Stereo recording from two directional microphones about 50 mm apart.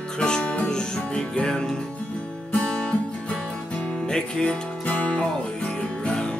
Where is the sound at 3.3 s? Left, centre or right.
Left.